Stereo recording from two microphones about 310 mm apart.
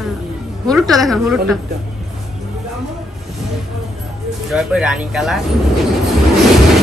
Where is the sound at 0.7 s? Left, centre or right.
Centre.